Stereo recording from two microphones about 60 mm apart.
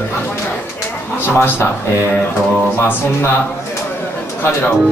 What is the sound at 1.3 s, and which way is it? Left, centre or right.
Speech, left.